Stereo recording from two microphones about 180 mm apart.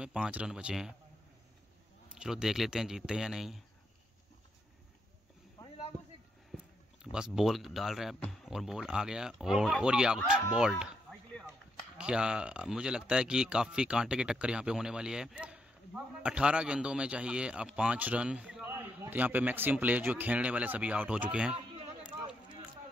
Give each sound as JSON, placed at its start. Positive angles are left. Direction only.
{"t": 0.0, "sound": "speech", "side_deg": -5}
{"t": 2.1, "sound": "speech", "side_deg": -5}
{"t": 6.5, "sound": "a sound", "side_deg": -5}
{"t": 7.3, "sound": "speech", "side_deg": 0}
{"t": 10.5, "sound": "a sound", "side_deg": -5}
{"t": 12.0, "sound": "speech", "side_deg": -5}